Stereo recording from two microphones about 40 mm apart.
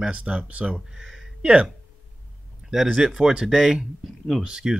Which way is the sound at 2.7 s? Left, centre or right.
Centre.